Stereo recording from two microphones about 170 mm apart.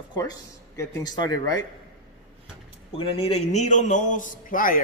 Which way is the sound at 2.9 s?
35° left (ahead or behind).